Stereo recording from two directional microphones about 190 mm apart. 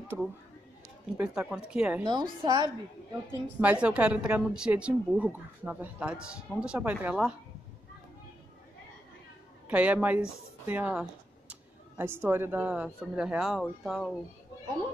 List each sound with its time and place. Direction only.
0.1 s a woman's voice: centre (ahead or behind)
2.4 s a woman's voice: 20° right (ahead or behind)
3.3 s a woman's voice: 5° right (ahead or behind)
9.7 s a woman's voice: 5° right (ahead or behind)